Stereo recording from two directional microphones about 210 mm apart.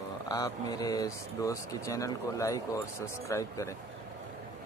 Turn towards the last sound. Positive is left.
turn(degrees=15)  # may be behind; listen again after turning